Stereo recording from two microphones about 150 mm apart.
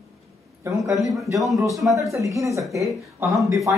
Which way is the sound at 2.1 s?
20° right (ahead or behind).